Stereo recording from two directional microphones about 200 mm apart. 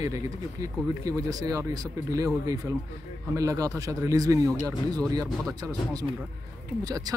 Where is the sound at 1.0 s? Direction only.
15° right (ahead or behind).